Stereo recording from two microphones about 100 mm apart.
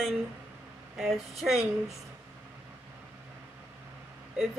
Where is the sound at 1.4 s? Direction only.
Centre (ahead or behind).